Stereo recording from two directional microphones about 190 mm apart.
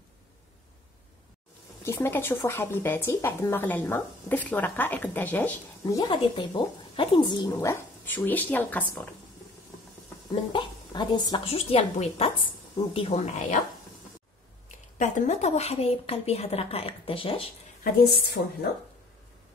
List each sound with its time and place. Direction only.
1.9 s speech: 10° left (ahead or behind)
5.9 s speech: 25° left (ahead or behind)
7.5 s speech: 15° left (ahead or behind)
10.5 s a woman's voice: 25° left (ahead or behind)
15.0 s a woman's voice: 40° left (ahead or behind)
18.0 s a woman's voice: 55° left (ahead or behind)